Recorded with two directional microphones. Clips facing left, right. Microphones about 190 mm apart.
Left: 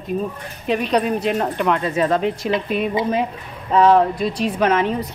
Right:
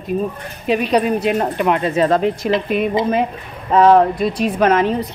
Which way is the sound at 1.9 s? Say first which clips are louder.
Right 3 dB; 35° right (ahead or behind).